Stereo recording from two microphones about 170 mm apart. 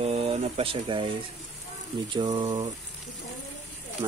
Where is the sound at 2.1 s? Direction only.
25° right (ahead or behind).